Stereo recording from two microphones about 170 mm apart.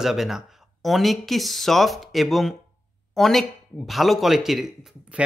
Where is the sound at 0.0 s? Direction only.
Centre (ahead or behind).